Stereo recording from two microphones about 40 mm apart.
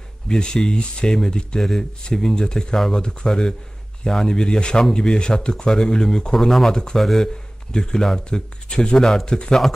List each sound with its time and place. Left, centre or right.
0.3 s speech: centre
6.7 s speech: centre